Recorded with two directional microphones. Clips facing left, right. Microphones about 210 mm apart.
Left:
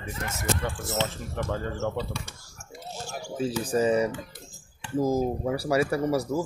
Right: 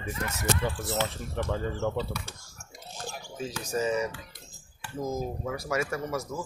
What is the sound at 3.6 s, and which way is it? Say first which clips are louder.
Speech: left 5 dB; 35° left (ahead or behind).